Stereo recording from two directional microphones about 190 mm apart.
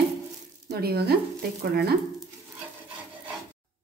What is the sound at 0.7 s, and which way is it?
Speech, 55° right (ahead or behind).